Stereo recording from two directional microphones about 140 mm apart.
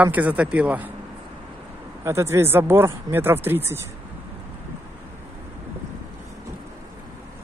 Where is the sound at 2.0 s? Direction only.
20° right (ahead or behind).